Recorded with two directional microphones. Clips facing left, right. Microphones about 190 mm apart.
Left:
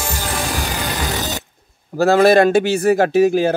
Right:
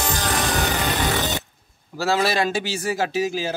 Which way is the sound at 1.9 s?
50° left (ahead or behind).